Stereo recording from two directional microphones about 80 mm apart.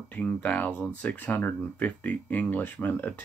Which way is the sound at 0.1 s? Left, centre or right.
Centre.